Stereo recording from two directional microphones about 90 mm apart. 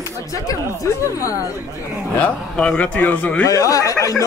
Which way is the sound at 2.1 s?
10° left (ahead or behind).